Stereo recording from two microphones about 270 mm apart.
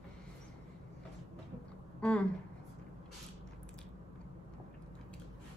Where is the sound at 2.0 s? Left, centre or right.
Centre.